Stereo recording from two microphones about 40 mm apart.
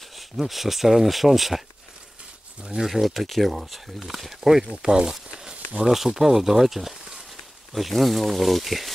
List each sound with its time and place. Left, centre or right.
0.4 s speech: centre
2.7 s speech: centre
4.8 s speech: right
5.3 s a sound: right
6.0 s speech: centre